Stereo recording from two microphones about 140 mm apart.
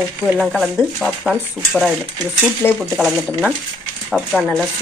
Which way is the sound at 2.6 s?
15° left (ahead or behind).